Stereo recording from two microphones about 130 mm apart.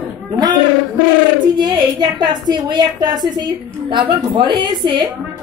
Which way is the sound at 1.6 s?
35° right (ahead or behind).